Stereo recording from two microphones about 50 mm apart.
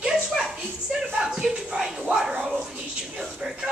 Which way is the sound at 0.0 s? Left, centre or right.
Centre.